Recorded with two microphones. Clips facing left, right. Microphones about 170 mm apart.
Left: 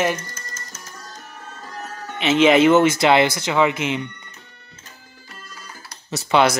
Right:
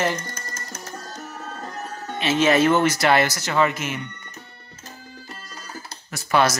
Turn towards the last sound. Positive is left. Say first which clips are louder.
# left 3 dB
turn(degrees=20)  # may be behind; listen again after turning